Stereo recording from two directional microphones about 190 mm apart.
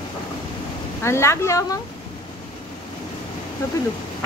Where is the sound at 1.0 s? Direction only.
15° left (ahead or behind).